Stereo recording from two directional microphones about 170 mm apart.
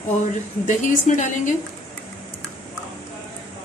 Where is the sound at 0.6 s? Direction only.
45° left (ahead or behind).